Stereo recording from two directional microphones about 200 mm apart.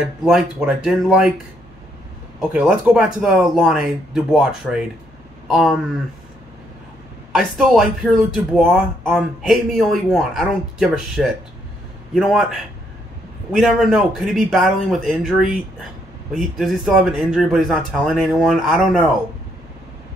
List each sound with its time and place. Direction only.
0.0 s speech: 5° right (ahead or behind)
2.4 s speech: 5° right (ahead or behind)
7.3 s speech: centre (ahead or behind)